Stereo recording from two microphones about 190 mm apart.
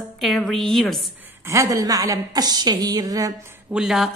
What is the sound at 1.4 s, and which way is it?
A woman's voice, 15° right (ahead or behind).